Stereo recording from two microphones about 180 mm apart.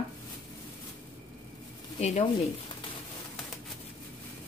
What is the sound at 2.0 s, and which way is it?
Speech, 35° left (ahead or behind).